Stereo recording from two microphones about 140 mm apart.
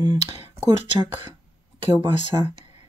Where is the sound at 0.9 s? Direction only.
35° right (ahead or behind).